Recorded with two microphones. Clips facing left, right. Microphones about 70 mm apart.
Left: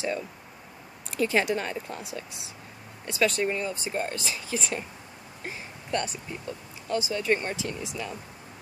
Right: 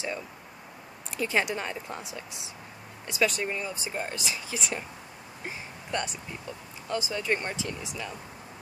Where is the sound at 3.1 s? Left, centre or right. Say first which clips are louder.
Left 2 dB; centre.